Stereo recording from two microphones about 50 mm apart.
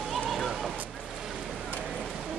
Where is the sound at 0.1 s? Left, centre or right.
Centre.